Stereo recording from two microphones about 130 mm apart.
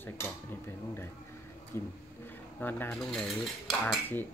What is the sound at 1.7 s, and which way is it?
Speech, 20° left (ahead or behind).